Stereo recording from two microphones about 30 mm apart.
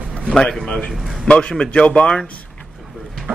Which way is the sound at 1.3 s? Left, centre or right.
Left.